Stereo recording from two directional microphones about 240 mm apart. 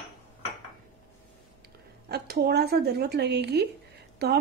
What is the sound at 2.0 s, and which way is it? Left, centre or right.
A woman's voice, right.